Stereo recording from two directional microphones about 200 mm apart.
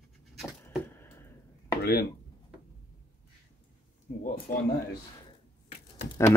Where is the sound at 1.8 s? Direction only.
50° left (ahead or behind).